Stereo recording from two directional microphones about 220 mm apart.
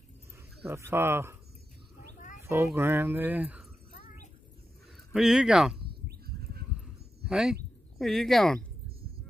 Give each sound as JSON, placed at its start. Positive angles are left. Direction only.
{"t": 0.7, "sound": "speech", "side_deg": -10}
{"t": 2.4, "sound": "speech", "side_deg": -10}
{"t": 3.9, "sound": "a sound", "side_deg": 35}
{"t": 5.1, "sound": "speech", "side_deg": 0}
{"t": 6.0, "sound": "horse", "side_deg": -45}
{"t": 7.2, "sound": "speech", "side_deg": -5}